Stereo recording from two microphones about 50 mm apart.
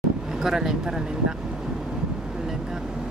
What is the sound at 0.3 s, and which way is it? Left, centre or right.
Speech, centre.